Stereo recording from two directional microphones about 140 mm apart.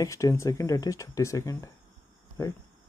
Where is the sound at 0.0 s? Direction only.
20° left (ahead or behind).